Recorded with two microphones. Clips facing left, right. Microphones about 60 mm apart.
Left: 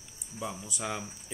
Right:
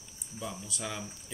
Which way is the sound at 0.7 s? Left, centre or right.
Left.